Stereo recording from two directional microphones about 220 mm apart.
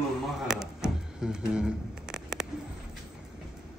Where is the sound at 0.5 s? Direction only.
5° right (ahead or behind).